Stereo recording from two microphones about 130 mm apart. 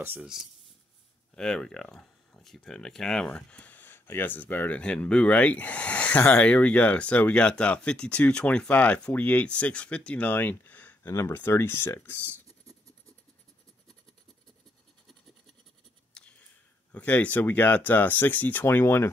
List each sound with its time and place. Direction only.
0.0 s speech: 15° right (ahead or behind)
1.3 s speech: 5° left (ahead or behind)
16.1 s writing: 5° left (ahead or behind)
16.9 s speech: 10° left (ahead or behind)